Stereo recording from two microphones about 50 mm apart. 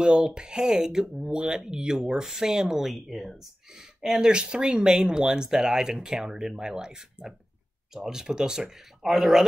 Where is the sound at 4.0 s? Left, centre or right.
Centre.